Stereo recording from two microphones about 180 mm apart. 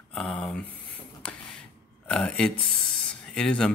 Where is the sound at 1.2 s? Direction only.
5° left (ahead or behind).